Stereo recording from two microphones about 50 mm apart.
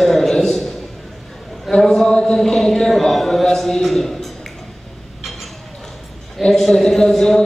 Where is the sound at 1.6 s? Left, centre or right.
Centre.